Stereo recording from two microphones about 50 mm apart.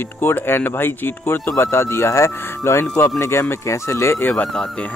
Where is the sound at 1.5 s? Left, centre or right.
Left.